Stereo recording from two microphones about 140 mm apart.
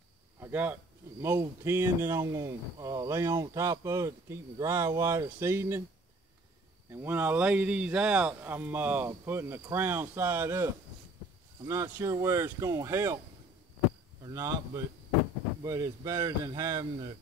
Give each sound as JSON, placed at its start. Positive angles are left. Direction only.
{"t": 0.4, "sound": "speech", "side_deg": -15}
{"t": 6.9, "sound": "speech", "side_deg": -15}
{"t": 14.2, "sound": "speech", "side_deg": -20}
{"t": 15.6, "sound": "speech", "side_deg": -25}